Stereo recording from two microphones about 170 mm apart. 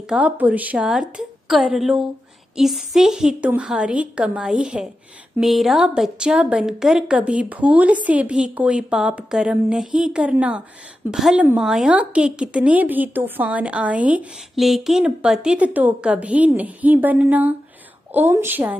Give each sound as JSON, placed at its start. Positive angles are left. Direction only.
{"t": 0.1, "sound": "a woman's voice", "side_deg": -10}